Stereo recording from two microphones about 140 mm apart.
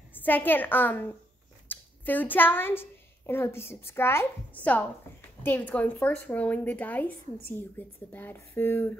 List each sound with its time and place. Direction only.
0.1 s a woman's voice: 15° left (ahead or behind)
5.4 s a woman's voice: 15° left (ahead or behind)